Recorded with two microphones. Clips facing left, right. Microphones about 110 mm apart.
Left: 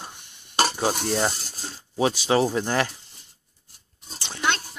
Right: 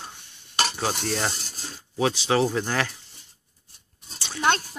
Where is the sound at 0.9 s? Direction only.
15° left (ahead or behind).